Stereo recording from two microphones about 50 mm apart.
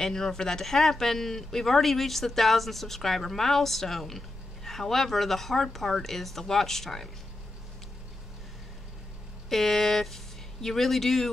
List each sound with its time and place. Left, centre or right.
0.0 s speech: centre
9.5 s speech: centre